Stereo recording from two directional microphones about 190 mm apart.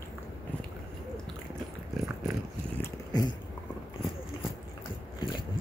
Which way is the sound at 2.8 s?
20° left (ahead or behind).